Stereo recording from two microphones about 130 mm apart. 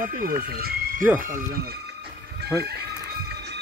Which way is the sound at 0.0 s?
90° right.